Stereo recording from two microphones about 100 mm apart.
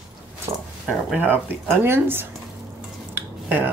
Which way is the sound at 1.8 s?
25° right (ahead or behind).